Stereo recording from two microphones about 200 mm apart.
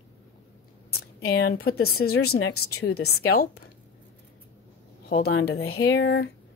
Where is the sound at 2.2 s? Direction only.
90° left.